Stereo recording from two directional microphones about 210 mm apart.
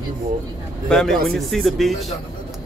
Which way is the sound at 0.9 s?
Centre (ahead or behind).